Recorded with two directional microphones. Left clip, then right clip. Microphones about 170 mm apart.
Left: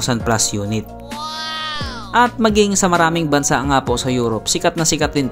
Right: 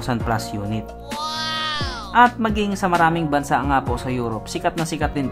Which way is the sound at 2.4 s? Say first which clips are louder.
Left 7 dB; 30° left (ahead or behind).